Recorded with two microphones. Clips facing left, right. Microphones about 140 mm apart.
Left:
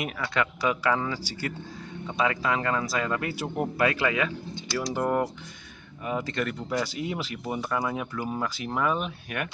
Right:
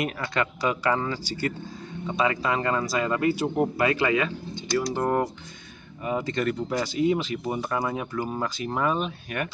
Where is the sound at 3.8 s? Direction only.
Centre (ahead or behind).